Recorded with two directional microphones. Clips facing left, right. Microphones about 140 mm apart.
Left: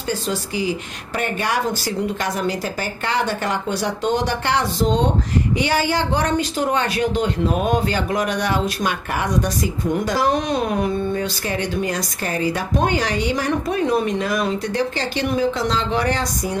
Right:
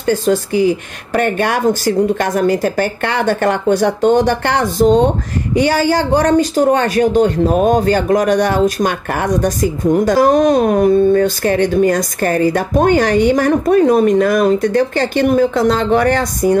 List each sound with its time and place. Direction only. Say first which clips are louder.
0.0 s speech: right 10 dB; 55° right (ahead or behind)